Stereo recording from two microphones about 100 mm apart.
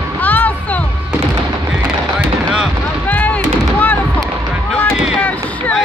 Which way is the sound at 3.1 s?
15° left (ahead or behind).